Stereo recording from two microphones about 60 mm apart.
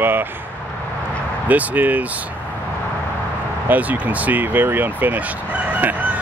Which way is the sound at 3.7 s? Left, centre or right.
Right.